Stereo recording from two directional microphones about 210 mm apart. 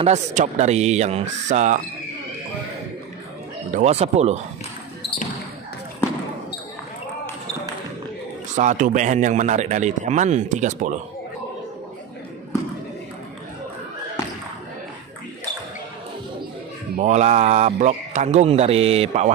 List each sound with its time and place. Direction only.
0.0 s speech: 35° right (ahead or behind)
3.7 s speech: 30° right (ahead or behind)
8.5 s speech: 35° right (ahead or behind)
16.9 s speech: 30° right (ahead or behind)